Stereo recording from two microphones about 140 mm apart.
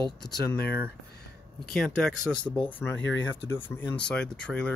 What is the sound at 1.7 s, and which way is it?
Speech, 5° left (ahead or behind).